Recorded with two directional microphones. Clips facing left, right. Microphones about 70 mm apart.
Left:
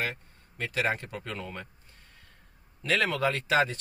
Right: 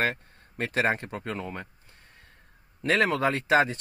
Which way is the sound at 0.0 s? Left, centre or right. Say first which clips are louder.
Right 6 dB; right.